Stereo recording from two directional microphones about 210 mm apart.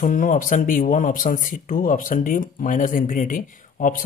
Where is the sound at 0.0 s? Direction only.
40° left (ahead or behind).